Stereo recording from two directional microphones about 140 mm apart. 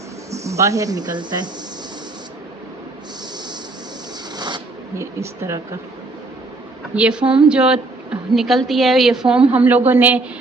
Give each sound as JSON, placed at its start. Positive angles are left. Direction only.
{"t": 0.3, "sound": "speech", "side_deg": -20}
{"t": 4.9, "sound": "speech", "side_deg": -20}
{"t": 6.9, "sound": "a woman's voice", "side_deg": -10}